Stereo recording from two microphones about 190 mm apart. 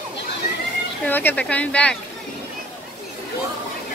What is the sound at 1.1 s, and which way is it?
Speech, 10° left (ahead or behind).